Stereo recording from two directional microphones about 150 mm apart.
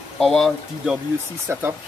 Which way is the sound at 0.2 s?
5° left (ahead or behind).